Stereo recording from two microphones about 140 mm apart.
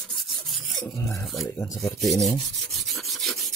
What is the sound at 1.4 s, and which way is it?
Speech, 25° left (ahead or behind).